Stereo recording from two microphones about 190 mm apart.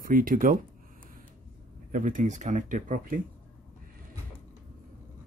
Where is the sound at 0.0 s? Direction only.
45° right (ahead or behind).